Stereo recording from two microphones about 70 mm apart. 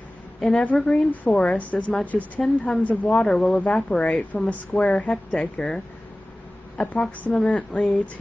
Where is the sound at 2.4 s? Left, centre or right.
Centre.